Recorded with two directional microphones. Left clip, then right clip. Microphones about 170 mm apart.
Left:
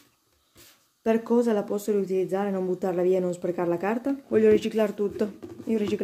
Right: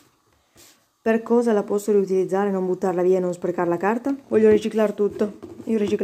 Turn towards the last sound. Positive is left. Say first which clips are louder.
# right 5 dB
turn(degrees=-5)  # may be behind; listen again after turning